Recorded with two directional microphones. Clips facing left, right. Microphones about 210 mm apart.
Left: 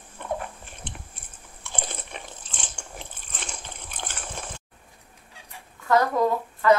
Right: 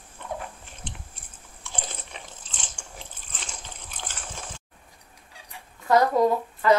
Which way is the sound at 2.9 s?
60° left (ahead or behind).